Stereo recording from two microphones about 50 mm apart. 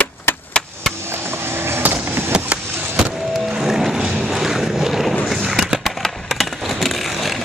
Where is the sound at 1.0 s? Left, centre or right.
Right.